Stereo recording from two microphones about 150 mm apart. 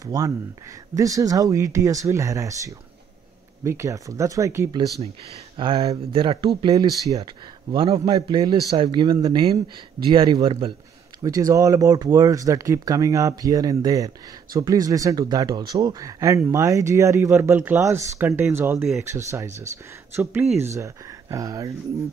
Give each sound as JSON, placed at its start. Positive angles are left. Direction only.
{"t": 0.0, "sound": "speech", "side_deg": -25}
{"t": 5.6, "sound": "a man's voice", "side_deg": -35}
{"t": 20.7, "sound": "speech", "side_deg": -20}